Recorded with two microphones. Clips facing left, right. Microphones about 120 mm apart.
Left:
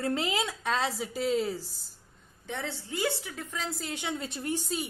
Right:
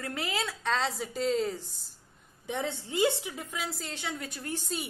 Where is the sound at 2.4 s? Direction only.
20° right (ahead or behind).